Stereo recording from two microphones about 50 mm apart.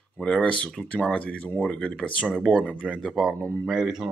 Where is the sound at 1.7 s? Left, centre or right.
Centre.